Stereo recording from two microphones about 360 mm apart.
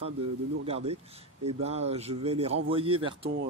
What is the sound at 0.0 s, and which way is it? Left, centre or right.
A man's voice, centre.